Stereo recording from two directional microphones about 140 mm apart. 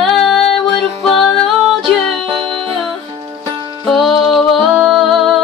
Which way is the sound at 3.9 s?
Centre (ahead or behind).